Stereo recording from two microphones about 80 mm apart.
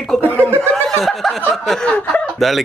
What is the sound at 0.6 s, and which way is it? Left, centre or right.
Snicker, centre.